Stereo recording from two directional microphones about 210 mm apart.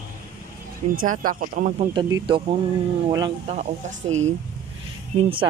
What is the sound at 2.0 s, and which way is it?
Speech, 20° right (ahead or behind).